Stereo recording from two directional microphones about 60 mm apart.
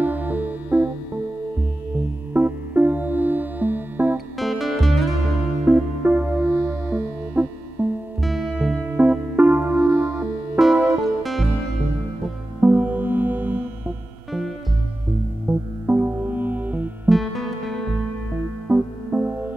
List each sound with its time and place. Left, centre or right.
0.0 s music: right
2.0 s music: right
4.4 s music: centre
5.7 s music: right
8.2 s music: centre
8.5 s music: centre
9.4 s music: right
11.2 s music: centre
12.5 s music: right
15.5 s music: right
17.1 s music: centre
18.7 s music: right